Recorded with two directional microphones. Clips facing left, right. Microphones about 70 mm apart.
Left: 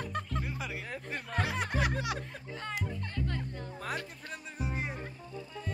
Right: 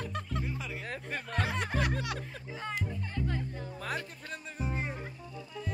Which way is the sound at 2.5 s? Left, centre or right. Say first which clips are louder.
Right 2 dB; centre.